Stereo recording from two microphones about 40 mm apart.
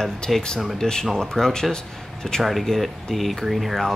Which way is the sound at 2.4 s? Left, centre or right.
Centre.